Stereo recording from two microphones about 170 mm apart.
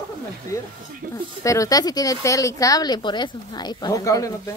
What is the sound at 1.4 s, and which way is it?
Speech, 20° left (ahead or behind).